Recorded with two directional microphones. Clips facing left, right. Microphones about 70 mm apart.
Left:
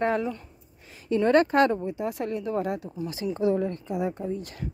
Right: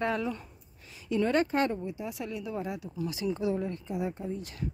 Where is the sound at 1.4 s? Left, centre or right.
Left.